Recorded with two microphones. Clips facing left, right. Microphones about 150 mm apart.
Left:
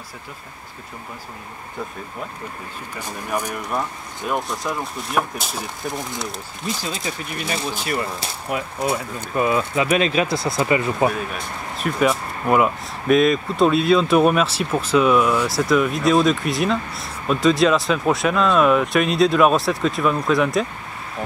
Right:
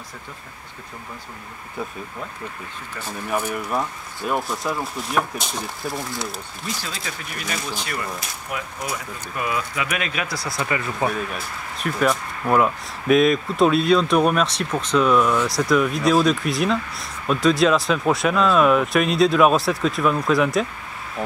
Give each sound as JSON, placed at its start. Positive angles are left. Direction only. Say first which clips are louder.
{"t": 4.3, "sound": "speech", "louder": "even", "side_deg": -5}
{"t": 6.8, "sound": "speech", "louder": "left 5 dB", "side_deg": 20}
{"t": 11.1, "sound": "speech", "louder": "left 2 dB", "side_deg": 0}